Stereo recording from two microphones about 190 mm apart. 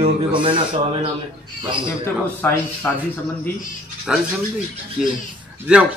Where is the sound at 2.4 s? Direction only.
10° left (ahead or behind).